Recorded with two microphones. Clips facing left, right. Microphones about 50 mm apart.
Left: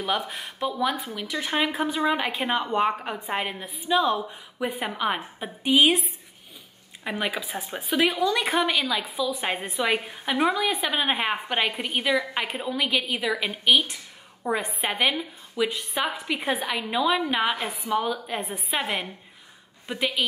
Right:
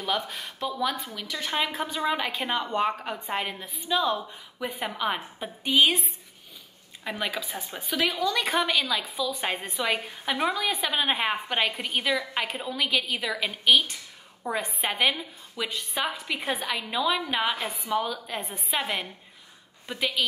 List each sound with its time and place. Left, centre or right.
0.3 s a woman's voice: centre
7.1 s a woman's voice: centre
7.4 s speech: left
8.5 s a woman's voice: centre
17.6 s a woman's voice: left
17.9 s a woman's voice: centre